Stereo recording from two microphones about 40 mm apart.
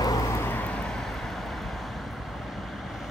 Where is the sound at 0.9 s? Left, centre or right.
Centre.